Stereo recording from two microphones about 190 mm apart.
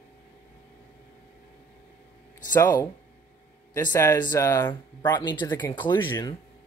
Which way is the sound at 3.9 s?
15° left (ahead or behind).